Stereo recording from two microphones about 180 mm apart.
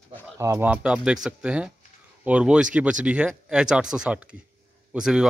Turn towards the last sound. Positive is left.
turn(degrees=-5)  # may be behind; listen again after turning